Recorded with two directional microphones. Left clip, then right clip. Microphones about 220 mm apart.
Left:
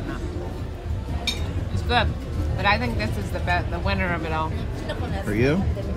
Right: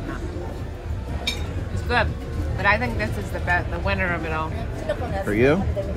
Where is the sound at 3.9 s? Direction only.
25° left (ahead or behind).